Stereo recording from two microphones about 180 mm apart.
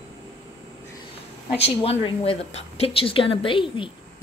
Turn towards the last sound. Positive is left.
turn(degrees=30)  # may be behind; listen again after turning